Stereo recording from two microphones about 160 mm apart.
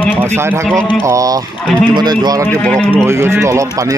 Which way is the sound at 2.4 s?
10° left (ahead or behind).